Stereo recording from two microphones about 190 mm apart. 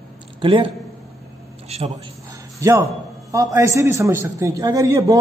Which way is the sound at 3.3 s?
15° right (ahead or behind).